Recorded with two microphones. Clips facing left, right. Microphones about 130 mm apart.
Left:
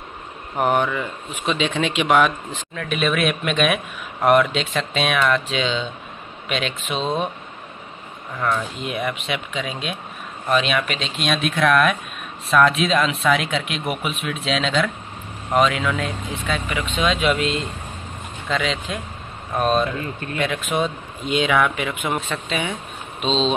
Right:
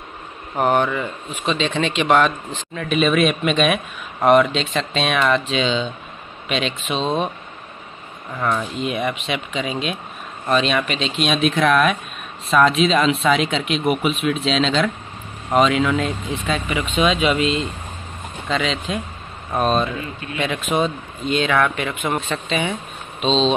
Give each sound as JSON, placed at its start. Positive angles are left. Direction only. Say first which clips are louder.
{"t": 0.6, "sound": "speech", "louder": "right 2 dB", "side_deg": 5}
{"t": 2.7, "sound": "speech", "louder": "right 4 dB", "side_deg": 0}
{"t": 8.4, "sound": "speech", "louder": "right 2 dB", "side_deg": -5}
{"t": 21.3, "sound": "speech", "louder": "even", "side_deg": 10}